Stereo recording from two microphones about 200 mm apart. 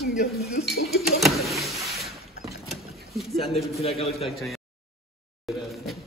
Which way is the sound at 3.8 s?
30° left (ahead or behind).